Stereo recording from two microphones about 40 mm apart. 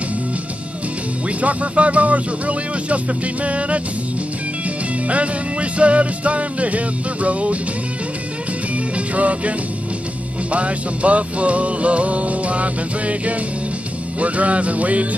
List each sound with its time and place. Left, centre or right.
1.4 s music: right
8.7 s music: right